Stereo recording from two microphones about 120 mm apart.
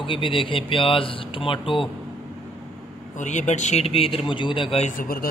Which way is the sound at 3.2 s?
85° left.